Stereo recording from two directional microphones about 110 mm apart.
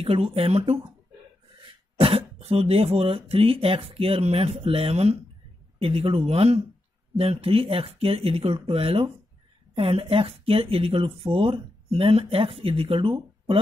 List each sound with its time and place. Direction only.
0.0 s speech: 60° right (ahead or behind)
2.0 s speech: 60° right (ahead or behind)